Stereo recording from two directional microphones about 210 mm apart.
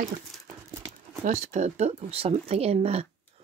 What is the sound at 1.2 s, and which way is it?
Speech, 35° right (ahead or behind).